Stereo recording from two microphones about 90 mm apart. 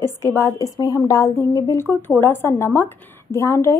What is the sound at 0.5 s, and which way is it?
Speech, 45° left (ahead or behind).